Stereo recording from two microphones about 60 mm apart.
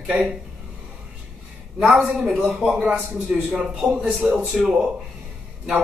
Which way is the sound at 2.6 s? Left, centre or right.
Centre.